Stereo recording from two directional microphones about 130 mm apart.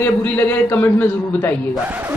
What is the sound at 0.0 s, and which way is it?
Speech, 15° left (ahead or behind).